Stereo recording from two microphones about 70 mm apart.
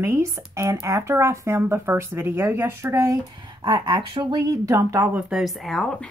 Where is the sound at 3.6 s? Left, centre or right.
Right.